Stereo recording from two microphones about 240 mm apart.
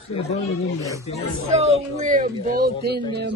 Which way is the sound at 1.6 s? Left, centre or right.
Right.